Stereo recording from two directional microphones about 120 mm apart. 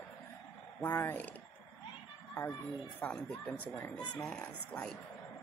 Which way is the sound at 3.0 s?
10° left (ahead or behind).